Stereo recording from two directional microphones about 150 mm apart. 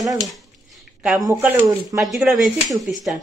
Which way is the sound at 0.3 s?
Centre (ahead or behind).